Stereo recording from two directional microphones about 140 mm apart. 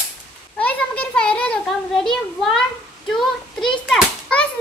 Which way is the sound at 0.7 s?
10° left (ahead or behind).